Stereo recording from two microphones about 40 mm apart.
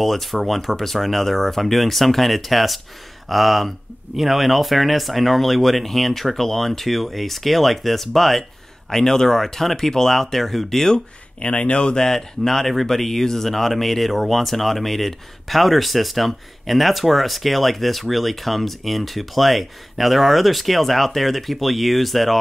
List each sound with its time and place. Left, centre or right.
0.0 s speech: centre
11.3 s speech: left
12.0 s speech: centre